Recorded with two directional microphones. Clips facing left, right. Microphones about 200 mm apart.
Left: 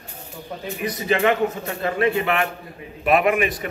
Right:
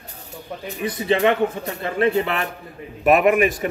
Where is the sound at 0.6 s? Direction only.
25° right (ahead or behind).